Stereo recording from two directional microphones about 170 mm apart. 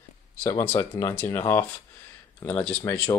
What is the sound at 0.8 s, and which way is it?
Speech, 15° left (ahead or behind).